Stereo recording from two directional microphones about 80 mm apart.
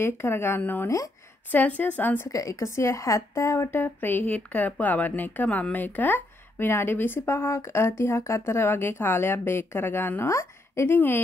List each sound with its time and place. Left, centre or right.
0.0 s speech: left
2.2 s a woman's voice: left